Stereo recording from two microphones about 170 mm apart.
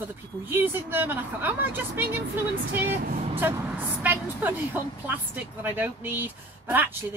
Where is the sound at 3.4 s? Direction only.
15° right (ahead or behind).